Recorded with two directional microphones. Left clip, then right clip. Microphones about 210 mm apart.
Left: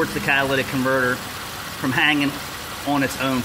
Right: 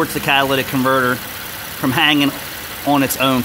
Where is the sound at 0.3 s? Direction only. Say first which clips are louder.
Right 5 dB; 30° right (ahead or behind).